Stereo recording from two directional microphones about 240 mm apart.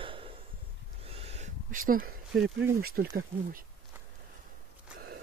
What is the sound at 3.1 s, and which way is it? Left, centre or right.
Speech, right.